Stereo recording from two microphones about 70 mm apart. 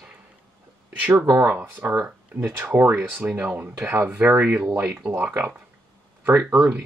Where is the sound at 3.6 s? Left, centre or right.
Right.